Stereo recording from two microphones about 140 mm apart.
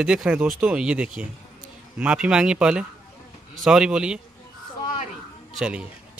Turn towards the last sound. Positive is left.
turn(degrees=-5)  # may be behind; listen again after turning